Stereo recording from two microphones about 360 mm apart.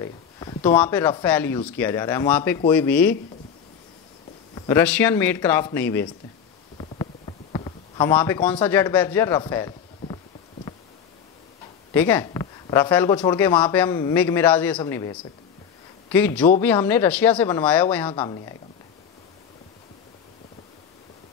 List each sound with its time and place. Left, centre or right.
0.0 s speech: centre
4.6 s speech: centre
6.8 s a sound: centre
11.9 s a woman's voice: centre